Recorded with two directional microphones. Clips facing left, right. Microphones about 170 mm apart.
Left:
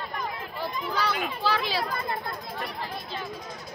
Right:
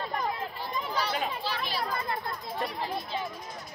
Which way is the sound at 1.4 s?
90° left.